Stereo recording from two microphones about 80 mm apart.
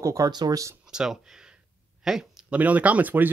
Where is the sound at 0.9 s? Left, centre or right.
Centre.